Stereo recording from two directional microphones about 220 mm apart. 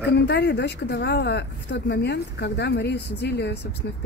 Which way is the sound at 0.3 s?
50° left (ahead or behind).